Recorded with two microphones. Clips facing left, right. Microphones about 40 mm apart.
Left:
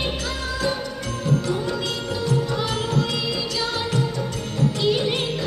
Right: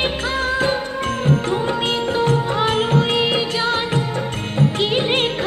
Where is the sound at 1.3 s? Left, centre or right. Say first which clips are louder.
Right 3 dB; right.